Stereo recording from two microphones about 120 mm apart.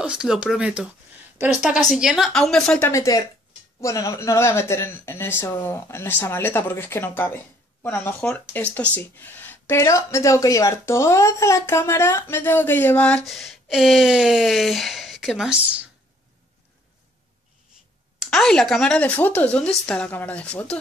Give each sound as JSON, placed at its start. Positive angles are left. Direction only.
{"t": 0.0, "sound": "speech", "side_deg": -5}
{"t": 2.9, "sound": "speech", "side_deg": 25}
{"t": 13.2, "sound": "speech", "side_deg": 0}
{"t": 18.2, "sound": "speech", "side_deg": 0}